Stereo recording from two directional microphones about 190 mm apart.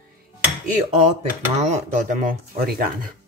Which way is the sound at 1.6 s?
35° right (ahead or behind).